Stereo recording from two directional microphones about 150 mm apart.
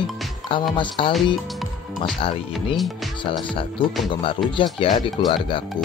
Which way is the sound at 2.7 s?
Centre (ahead or behind).